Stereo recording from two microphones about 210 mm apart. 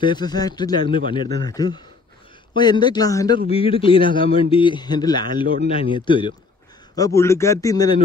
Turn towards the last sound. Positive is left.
turn(degrees=15)  # may be behind; listen again after turning